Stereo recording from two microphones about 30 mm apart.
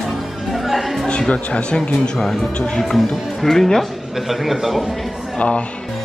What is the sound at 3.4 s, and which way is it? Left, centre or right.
Speech, centre.